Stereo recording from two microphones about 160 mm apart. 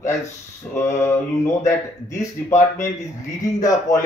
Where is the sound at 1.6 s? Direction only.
20° left (ahead or behind).